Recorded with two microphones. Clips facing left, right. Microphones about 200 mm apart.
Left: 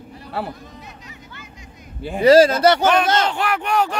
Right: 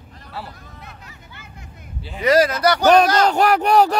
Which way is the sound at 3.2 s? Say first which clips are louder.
Right 6 dB; 40° right (ahead or behind).